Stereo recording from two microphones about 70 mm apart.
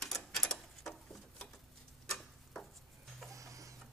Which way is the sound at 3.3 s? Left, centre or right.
Right.